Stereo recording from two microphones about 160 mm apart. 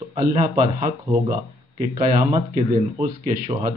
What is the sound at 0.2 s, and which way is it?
Speech, 55° right (ahead or behind).